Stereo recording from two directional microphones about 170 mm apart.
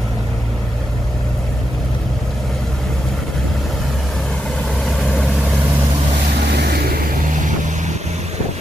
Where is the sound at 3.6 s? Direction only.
Centre (ahead or behind).